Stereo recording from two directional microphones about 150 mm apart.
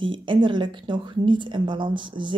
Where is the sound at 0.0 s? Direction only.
35° right (ahead or behind).